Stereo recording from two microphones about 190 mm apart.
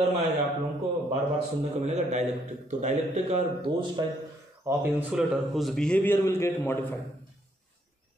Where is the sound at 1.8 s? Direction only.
35° right (ahead or behind).